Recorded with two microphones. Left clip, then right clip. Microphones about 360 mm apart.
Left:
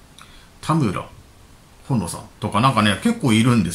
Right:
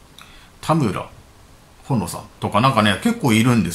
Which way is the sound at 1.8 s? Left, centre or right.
Centre.